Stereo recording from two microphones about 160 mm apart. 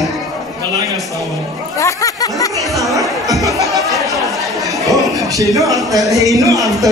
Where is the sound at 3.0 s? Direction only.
Centre (ahead or behind).